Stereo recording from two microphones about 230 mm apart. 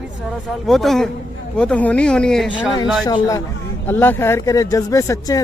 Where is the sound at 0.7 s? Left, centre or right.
Centre.